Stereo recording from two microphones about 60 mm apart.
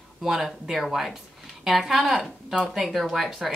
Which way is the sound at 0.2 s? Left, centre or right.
Centre.